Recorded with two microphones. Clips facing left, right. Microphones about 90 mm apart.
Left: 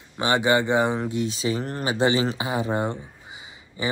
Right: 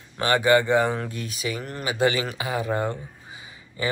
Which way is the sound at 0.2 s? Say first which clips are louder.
Right 1 dB; 20° left (ahead or behind).